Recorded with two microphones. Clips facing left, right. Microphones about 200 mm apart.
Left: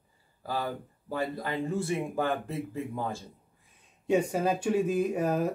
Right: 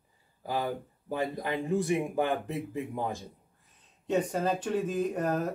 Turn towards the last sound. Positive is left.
turn(degrees=10)  # may be behind; listen again after turning